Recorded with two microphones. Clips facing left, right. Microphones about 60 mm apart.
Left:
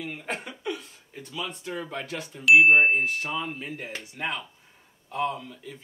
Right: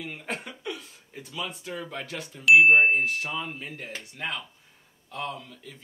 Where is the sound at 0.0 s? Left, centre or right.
Centre.